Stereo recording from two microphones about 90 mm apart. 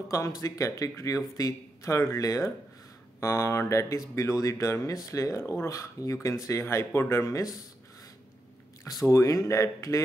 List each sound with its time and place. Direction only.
0.1 s speech: 35° left (ahead or behind)
9.0 s speech: 35° left (ahead or behind)